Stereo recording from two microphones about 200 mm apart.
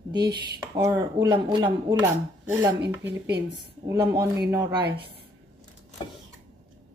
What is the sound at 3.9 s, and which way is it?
Speech, 15° right (ahead or behind).